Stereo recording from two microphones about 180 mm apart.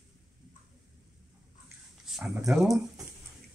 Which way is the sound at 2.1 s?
Centre (ahead or behind).